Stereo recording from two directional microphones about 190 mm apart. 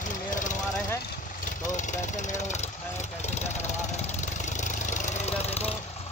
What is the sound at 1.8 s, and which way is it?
Vehicle, 40° left (ahead or behind).